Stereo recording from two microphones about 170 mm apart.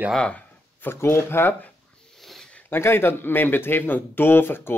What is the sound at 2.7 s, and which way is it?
Speech, 15° left (ahead or behind).